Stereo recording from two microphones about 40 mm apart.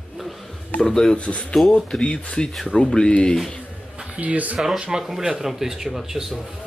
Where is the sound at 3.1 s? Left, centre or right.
Left.